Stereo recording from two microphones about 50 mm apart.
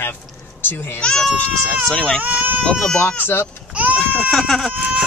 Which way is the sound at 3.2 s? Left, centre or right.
Left.